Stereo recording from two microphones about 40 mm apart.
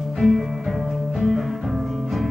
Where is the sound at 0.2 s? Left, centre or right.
Centre.